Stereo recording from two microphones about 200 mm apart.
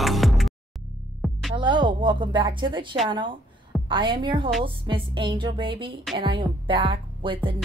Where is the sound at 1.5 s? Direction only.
25° right (ahead or behind).